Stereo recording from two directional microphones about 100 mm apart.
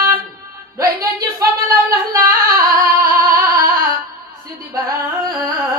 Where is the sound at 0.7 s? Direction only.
35° right (ahead or behind).